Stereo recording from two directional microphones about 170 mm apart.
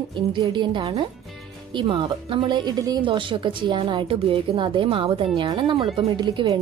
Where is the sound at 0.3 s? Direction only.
25° right (ahead or behind).